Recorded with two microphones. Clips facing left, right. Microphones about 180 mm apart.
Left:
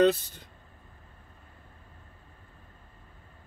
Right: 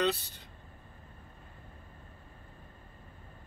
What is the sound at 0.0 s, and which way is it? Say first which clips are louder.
Speech: left 8 dB; 45° left (ahead or behind).